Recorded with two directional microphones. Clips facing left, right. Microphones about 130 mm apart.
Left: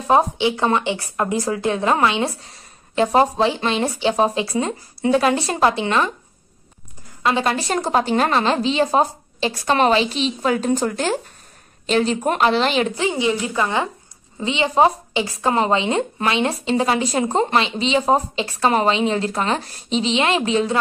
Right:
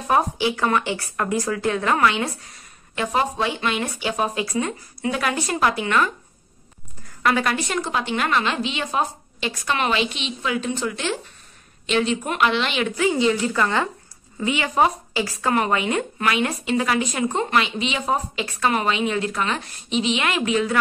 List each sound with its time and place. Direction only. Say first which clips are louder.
0.1 s a woman's voice: left 4 dB; 25° left (ahead or behind)
7.2 s a woman's voice: left 2 dB; 25° left (ahead or behind)